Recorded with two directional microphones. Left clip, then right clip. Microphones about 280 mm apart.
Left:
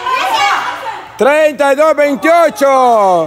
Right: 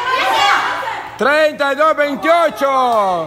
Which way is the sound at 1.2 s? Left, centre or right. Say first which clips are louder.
Left 4 dB; centre.